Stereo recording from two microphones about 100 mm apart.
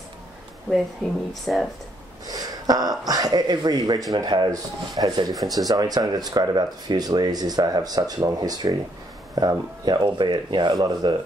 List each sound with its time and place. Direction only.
1.4 s speech: 5° left (ahead or behind)
2.2 s a sound: 40° right (ahead or behind)
3.1 s speech: 40° right (ahead or behind)
5.4 s speech: centre (ahead or behind)
5.7 s speech: 40° right (ahead or behind)